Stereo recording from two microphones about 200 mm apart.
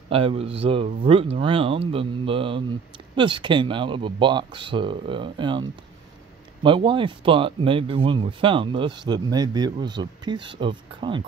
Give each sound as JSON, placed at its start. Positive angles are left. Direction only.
{"t": 0.1, "sound": "speech", "side_deg": -30}